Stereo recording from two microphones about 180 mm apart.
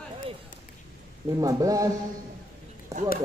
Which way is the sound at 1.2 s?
20° right (ahead or behind).